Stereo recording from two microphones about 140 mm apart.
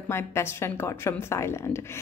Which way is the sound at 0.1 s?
20° left (ahead or behind).